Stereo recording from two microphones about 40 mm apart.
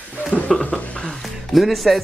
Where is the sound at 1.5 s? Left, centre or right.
Centre.